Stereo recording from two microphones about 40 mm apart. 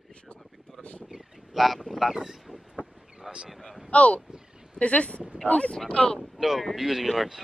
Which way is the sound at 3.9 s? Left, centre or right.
Left.